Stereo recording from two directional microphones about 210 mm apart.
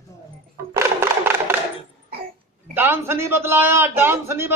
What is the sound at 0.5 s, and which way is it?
Music, 10° right (ahead or behind).